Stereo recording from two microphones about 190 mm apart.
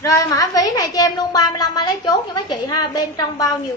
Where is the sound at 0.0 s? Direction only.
15° left (ahead or behind).